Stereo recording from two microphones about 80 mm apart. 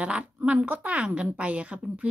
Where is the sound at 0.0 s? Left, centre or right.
Centre.